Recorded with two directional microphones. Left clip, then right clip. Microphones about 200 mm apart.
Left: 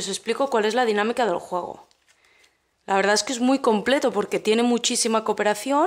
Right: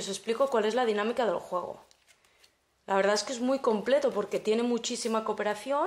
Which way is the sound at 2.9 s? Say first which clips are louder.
Left 6 dB; 35° left (ahead or behind).